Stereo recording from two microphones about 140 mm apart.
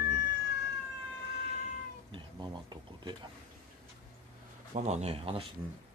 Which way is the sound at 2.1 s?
35° right (ahead or behind).